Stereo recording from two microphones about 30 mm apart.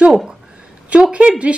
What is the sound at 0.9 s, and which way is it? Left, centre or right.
Speech, right.